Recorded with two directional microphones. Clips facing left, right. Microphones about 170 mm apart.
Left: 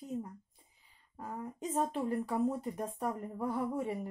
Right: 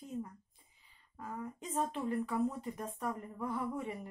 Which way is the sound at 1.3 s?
40° left (ahead or behind).